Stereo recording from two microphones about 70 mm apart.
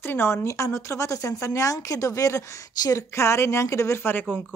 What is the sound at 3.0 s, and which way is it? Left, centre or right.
Speech, left.